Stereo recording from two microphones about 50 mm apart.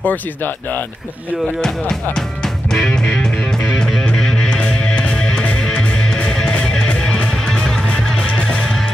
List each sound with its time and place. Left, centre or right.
0.0 s speech: left
2.1 s music: centre